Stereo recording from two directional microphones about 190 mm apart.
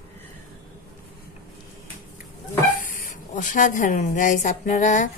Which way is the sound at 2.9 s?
45° left (ahead or behind).